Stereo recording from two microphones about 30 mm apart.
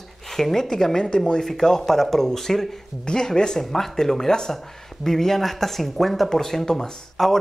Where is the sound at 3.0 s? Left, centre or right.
Left.